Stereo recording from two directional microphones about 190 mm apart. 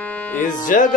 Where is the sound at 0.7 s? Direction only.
40° left (ahead or behind).